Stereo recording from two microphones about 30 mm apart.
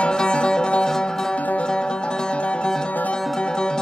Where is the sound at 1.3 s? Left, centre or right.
Left.